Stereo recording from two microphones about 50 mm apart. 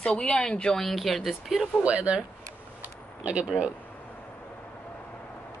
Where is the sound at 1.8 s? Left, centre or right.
Right.